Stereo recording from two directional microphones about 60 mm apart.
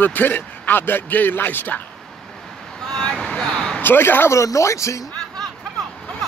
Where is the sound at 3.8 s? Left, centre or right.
Left.